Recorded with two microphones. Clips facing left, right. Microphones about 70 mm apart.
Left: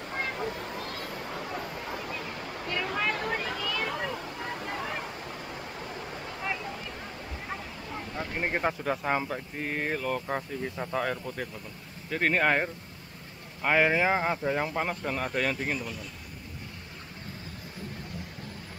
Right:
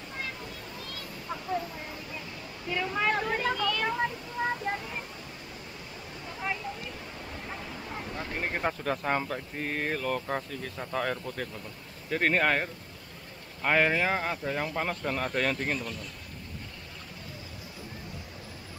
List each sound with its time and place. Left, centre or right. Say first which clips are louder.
0.1 s a sound: left 7 dB; left
3.3 s a sound: right 3 dB; centre
3.8 s waterfall: right 2 dB; left
8.2 s speech: left 3 dB; centre
8.6 s speech: right 1 dB; centre
10.5 s speech: left 4 dB; centre
10.9 s speech: right 1 dB; centre